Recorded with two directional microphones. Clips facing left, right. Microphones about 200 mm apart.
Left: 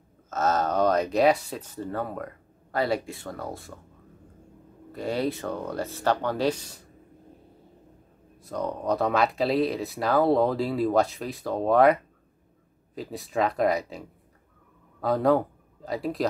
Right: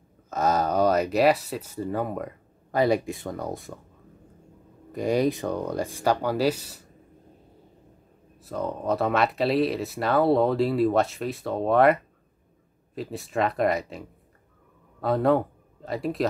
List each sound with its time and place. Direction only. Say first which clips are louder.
0.3 s speech: right 1 dB; 10° right (ahead or behind)
4.9 s speech: right 4 dB; 15° right (ahead or behind)
8.4 s a man's voice: even; 5° right (ahead or behind)